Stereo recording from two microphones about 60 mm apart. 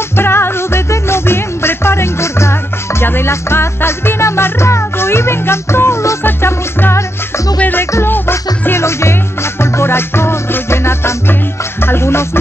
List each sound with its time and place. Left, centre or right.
0.1 s music: left
7.5 s music: left
7.8 s music: left